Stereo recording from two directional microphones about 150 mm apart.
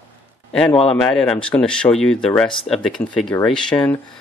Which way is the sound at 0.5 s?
5° left (ahead or behind).